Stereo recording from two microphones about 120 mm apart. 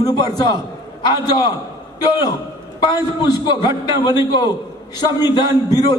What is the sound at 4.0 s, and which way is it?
Speech, 40° left (ahead or behind).